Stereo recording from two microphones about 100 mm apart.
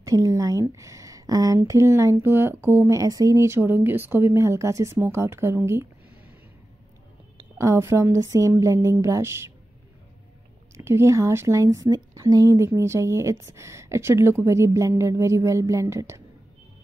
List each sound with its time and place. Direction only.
0.0 s a woman's voice: 35° right (ahead or behind)
3.0 s a woman's voice: 35° right (ahead or behind)
7.5 s a woman's voice: 30° right (ahead or behind)
10.8 s a woman's voice: 25° right (ahead or behind)